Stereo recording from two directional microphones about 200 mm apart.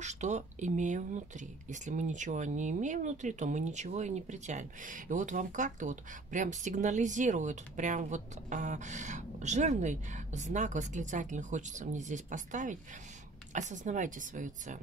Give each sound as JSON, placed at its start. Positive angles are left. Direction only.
{"t": 0.0, "sound": "speech", "side_deg": -35}